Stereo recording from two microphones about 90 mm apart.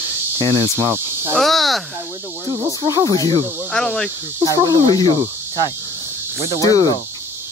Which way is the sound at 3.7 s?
10° left (ahead or behind).